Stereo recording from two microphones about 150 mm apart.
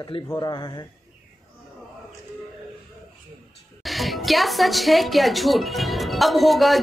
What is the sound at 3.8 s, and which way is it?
A woman's voice, centre (ahead or behind).